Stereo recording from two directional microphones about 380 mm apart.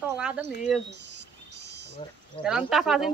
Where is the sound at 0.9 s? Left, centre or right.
Right.